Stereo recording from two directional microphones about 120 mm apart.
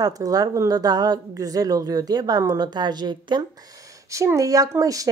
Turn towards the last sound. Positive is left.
turn(degrees=-30)  # may be behind; listen again after turning